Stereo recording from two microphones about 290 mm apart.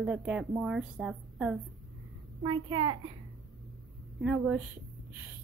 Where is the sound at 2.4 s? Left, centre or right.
Centre.